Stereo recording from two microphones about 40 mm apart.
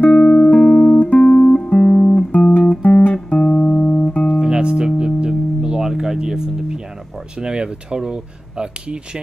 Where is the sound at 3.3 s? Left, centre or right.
Left.